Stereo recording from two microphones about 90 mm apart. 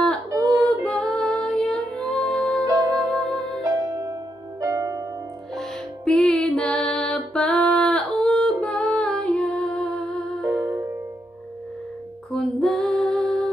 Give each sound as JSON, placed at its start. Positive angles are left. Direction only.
{"t": 0.3, "sound": "female singing", "side_deg": -40}
{"t": 0.8, "sound": "music", "side_deg": 5}
{"t": 2.6, "sound": "music", "side_deg": -40}
{"t": 3.1, "sound": "music", "side_deg": 0}
{"t": 3.3, "sound": "music", "side_deg": -40}
{"t": 5.6, "sound": "music", "side_deg": 5}
{"t": 10.4, "sound": "music", "side_deg": -40}
{"t": 12.3, "sound": "female singing", "side_deg": 5}